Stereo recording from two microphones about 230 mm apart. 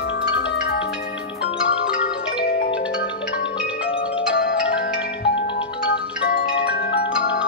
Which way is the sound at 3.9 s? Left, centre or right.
Left.